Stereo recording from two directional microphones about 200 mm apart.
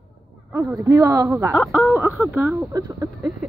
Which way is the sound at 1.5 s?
Centre (ahead or behind).